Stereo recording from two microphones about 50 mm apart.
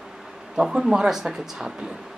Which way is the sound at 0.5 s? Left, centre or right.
Centre.